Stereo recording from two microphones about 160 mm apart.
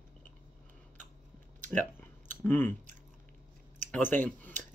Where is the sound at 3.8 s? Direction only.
10° left (ahead or behind).